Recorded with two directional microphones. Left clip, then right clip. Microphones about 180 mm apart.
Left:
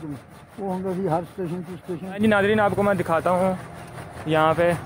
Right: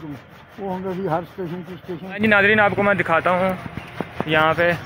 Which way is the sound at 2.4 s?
5° left (ahead or behind).